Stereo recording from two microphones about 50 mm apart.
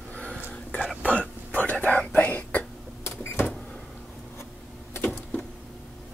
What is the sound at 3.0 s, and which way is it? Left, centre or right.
Power windows, left.